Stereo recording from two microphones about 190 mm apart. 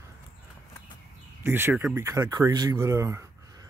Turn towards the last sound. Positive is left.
turn(degrees=-15)  # may be behind; listen again after turning